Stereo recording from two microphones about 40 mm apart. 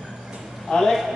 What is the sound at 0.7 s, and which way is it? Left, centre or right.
Speech, centre.